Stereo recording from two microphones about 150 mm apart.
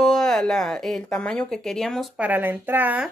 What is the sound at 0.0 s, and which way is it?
A woman's voice, centre (ahead or behind).